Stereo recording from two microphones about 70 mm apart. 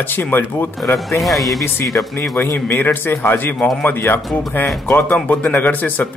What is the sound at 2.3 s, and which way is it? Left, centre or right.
A man's voice, left.